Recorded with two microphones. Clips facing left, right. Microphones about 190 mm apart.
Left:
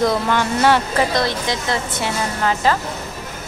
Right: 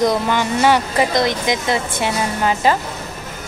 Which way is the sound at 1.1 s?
15° right (ahead or behind).